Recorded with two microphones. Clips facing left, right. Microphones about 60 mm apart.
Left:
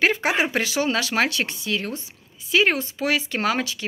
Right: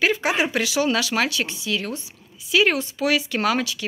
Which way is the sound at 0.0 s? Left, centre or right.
Left.